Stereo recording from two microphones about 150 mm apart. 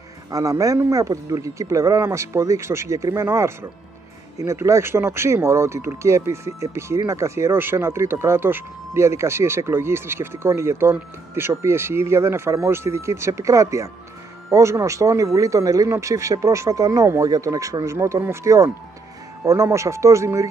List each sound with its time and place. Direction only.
0.3 s speech: 20° right (ahead or behind)